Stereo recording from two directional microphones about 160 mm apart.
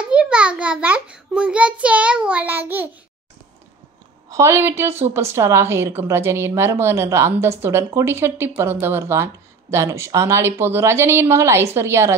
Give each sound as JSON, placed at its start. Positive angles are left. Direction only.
{"t": 0.0, "sound": "a woman's voice", "side_deg": -5}
{"t": 4.3, "sound": "a woman's voice", "side_deg": -15}